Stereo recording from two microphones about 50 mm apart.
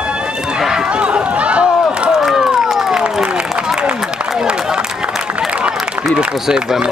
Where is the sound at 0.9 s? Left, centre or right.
Right.